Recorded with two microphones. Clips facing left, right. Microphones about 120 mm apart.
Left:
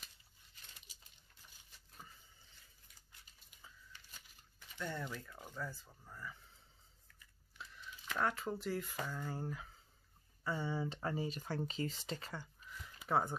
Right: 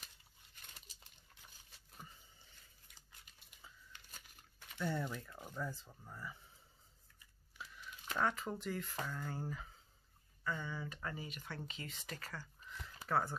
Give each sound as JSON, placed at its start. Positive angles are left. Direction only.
{"t": 4.7, "sound": "speech", "side_deg": -10}
{"t": 7.5, "sound": "a sound", "side_deg": -5}
{"t": 8.2, "sound": "speech", "side_deg": 0}
{"t": 10.4, "sound": "speech", "side_deg": 30}